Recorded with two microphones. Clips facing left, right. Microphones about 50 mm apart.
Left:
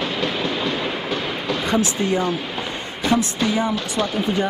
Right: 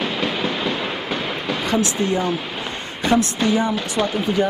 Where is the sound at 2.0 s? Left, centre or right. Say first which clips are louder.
Even; centre.